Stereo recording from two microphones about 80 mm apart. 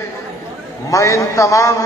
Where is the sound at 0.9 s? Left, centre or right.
Left.